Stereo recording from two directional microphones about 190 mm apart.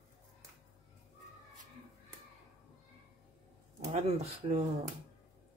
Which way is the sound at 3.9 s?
35° right (ahead or behind).